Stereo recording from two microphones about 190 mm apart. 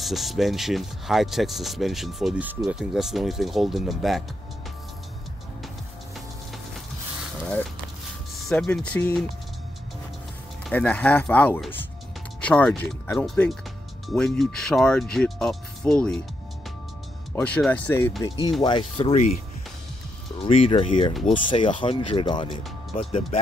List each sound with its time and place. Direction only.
0.0 s speech: centre (ahead or behind)
8.5 s speech: 5° left (ahead or behind)
10.7 s speech: 10° left (ahead or behind)
17.4 s speech: 5° left (ahead or behind)
18.6 s speech: 25° left (ahead or behind)
20.3 s speech: 30° left (ahead or behind)